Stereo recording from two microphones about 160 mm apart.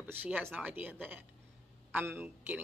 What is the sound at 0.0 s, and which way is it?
A woman's voice, 10° right (ahead or behind).